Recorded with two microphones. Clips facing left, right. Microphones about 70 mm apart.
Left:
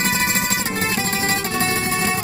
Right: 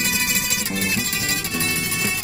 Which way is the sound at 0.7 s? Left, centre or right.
Left.